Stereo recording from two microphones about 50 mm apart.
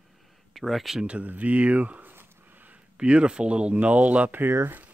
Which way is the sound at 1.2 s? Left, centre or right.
Right.